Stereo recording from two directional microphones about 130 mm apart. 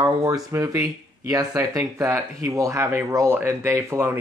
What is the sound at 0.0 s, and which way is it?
Speech, 25° right (ahead or behind).